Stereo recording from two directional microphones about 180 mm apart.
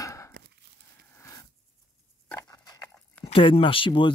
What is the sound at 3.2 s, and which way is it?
Speech, 35° left (ahead or behind).